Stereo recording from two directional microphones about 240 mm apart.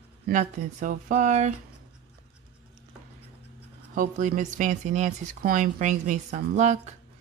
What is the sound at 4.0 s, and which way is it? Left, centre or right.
Speech, right.